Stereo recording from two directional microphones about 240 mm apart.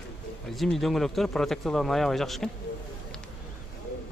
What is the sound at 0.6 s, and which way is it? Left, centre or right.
Speech, centre.